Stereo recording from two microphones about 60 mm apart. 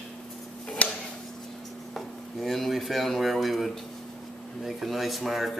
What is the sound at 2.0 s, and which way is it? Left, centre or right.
Speech, centre.